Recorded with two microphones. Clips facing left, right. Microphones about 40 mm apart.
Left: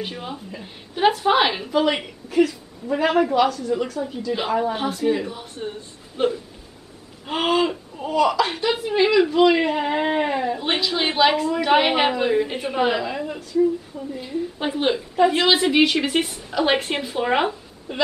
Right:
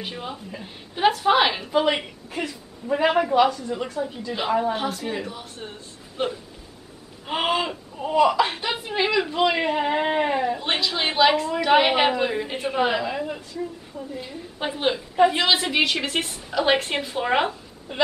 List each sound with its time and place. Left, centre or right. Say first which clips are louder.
0.0 s a woman's voice: left 2 dB; centre
3.4 s a woman's voice: left 1 dB; centre
4.3 s speech: left 1 dB; centre